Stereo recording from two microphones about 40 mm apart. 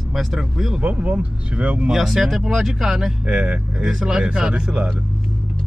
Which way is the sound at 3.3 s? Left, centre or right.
Right.